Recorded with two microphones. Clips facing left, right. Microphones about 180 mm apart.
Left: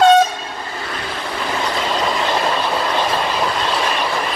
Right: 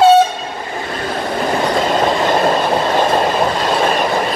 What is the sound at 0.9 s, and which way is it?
Train, 45° right (ahead or behind).